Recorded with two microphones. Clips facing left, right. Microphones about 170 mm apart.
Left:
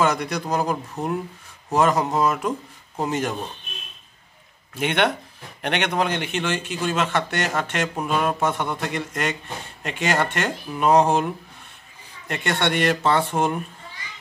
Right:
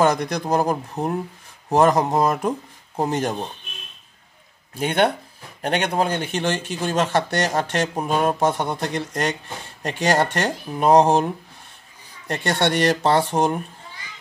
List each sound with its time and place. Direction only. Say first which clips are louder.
0.0 s speech: right 3 dB; 40° right (ahead or behind)
4.7 s speech: right 2 dB; 35° right (ahead or behind)
12.3 s speech: right 2 dB; 40° right (ahead or behind)